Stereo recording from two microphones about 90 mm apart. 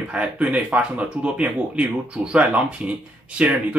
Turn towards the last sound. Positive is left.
turn(degrees=-15)  # may be behind; listen again after turning